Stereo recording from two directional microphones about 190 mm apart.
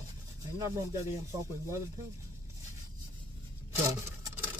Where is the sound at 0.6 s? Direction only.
15° right (ahead or behind).